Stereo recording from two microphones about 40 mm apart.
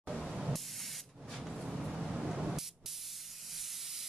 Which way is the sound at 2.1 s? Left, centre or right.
Centre.